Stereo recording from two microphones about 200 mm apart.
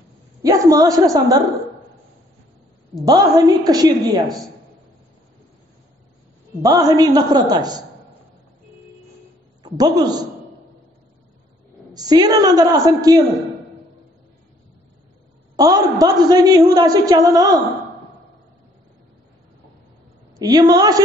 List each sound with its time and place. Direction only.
0.4 s a woman's voice: 15° right (ahead or behind)
3.1 s a man's voice: 20° right (ahead or behind)
6.6 s a man's voice: 20° right (ahead or behind)
9.6 s a man's voice: 20° right (ahead or behind)
11.9 s a man's voice: 20° right (ahead or behind)
15.5 s a man's voice: 20° right (ahead or behind)
20.3 s a man's voice: 20° right (ahead or behind)